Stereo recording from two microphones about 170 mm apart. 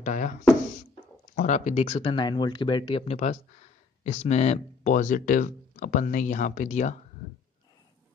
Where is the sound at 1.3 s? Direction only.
45° left (ahead or behind).